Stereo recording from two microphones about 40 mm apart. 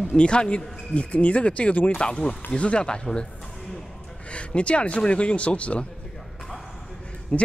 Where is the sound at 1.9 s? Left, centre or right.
Left.